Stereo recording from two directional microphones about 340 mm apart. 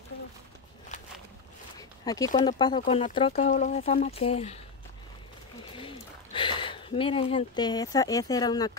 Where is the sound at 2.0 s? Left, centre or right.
Centre.